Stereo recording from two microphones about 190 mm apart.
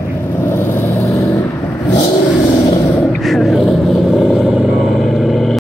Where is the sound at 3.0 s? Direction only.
Centre (ahead or behind).